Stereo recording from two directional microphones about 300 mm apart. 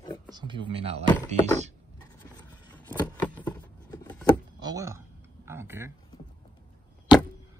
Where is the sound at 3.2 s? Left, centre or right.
Centre.